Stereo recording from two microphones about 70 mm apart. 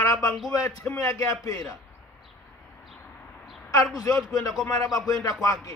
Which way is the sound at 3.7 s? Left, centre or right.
Left.